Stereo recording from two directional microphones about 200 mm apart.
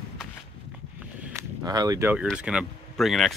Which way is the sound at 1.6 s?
20° right (ahead or behind).